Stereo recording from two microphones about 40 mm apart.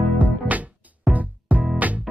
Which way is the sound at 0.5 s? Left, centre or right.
Right.